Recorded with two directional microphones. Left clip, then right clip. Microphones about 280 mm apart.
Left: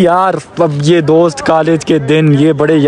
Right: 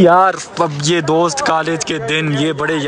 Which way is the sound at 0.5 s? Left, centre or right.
Centre.